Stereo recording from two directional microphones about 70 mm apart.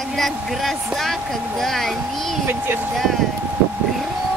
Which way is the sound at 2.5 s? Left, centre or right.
Right.